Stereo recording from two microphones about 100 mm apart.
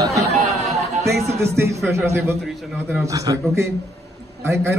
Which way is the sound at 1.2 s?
90° right.